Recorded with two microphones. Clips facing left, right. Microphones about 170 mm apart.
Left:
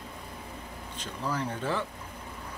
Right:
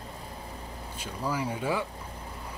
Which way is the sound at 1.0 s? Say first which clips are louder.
Right 1 dB; 10° right (ahead or behind).